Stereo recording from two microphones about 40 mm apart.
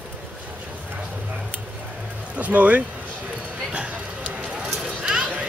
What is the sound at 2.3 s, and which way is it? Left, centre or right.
Speech, right.